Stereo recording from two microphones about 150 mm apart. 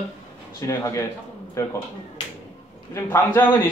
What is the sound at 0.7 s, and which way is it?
A man's voice, 20° left (ahead or behind).